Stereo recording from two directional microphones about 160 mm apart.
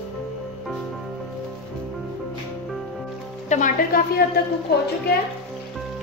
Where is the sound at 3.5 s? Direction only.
45° left (ahead or behind).